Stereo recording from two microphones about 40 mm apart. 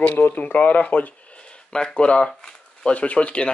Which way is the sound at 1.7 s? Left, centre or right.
Left.